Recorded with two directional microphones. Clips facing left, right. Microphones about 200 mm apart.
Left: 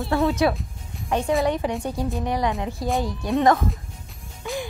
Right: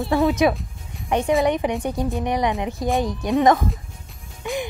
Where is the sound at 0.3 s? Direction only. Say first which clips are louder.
Right 2 dB; 20° right (ahead or behind).